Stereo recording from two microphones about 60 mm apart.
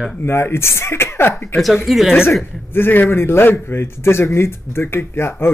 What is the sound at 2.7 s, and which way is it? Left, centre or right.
A man's voice, left.